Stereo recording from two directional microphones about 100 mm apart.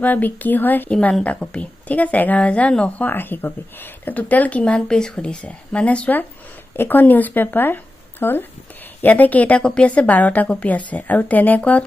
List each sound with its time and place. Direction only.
0.0 s a woman's voice: 15° left (ahead or behind)